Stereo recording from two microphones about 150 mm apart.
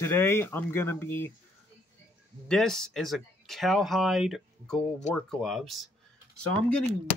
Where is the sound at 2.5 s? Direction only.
5° left (ahead or behind).